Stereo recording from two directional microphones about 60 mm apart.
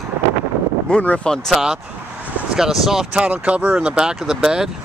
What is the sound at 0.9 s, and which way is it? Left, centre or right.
Speech, centre.